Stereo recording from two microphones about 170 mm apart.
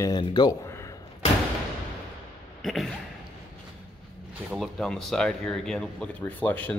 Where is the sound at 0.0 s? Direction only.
25° left (ahead or behind).